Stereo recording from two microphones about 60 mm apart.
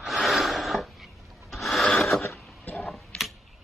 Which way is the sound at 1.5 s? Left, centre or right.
Centre.